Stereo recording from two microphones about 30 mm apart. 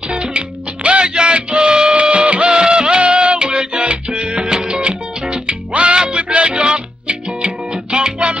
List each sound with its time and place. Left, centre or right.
0.1 s music: right
1.0 s music: right
1.3 s music: right
2.5 s music: right
5.7 s music: right